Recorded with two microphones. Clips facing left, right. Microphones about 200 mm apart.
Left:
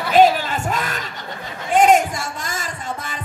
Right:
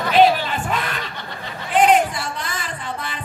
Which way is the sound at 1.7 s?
45° left (ahead or behind).